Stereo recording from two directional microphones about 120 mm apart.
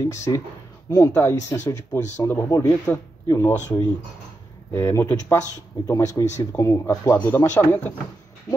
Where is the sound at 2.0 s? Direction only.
85° left.